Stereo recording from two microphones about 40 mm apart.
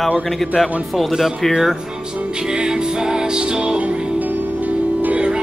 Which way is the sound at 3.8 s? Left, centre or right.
Right.